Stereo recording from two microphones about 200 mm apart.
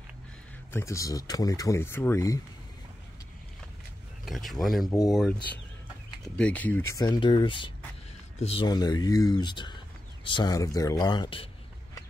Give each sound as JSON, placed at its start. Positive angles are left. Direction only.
{"t": 0.7, "sound": "speech", "side_deg": 15}
{"t": 4.3, "sound": "speech", "side_deg": 0}
{"t": 6.9, "sound": "speech", "side_deg": 20}
{"t": 8.6, "sound": "speech", "side_deg": 20}